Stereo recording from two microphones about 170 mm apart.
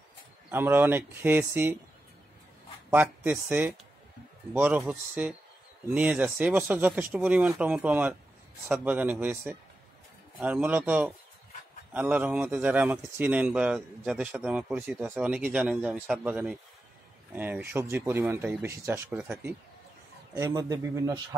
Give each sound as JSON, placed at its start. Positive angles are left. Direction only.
{"t": 0.5, "sound": "speech", "side_deg": -15}
{"t": 2.9, "sound": "speech", "side_deg": -10}
{"t": 20.3, "sound": "speech", "side_deg": -15}